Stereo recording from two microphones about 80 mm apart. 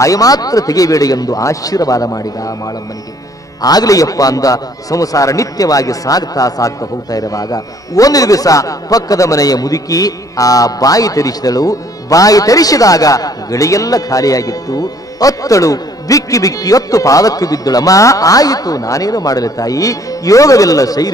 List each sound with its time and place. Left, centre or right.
0.0 s a man's voice: left